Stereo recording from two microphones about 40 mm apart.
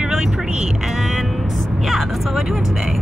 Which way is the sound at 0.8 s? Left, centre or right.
Centre.